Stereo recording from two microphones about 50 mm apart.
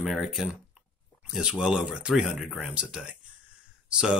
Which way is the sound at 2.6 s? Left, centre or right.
Centre.